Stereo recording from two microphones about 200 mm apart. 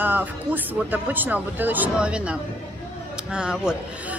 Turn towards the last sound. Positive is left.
turn(degrees=-5)  # may be behind; listen again after turning